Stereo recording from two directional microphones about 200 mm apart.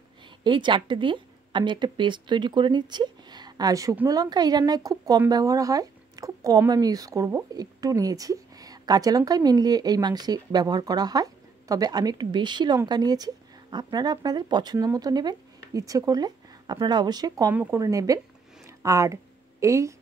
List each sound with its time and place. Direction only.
0.4 s a woman's voice: 25° right (ahead or behind)